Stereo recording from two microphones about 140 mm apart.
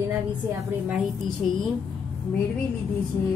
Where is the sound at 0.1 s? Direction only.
15° right (ahead or behind).